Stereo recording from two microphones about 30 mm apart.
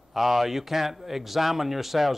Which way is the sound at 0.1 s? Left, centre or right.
Centre.